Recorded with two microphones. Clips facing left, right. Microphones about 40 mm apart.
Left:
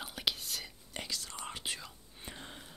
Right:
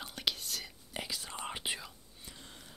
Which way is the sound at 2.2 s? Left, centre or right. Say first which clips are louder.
Left 5 dB; left.